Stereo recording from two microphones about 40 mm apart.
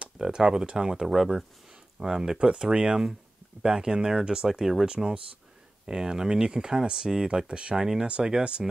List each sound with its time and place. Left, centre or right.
0.2 s speech: centre
1.0 s speech: centre
2.0 s speech: centre
4.8 s speech: right
5.9 s speech: centre
7.7 s speech: centre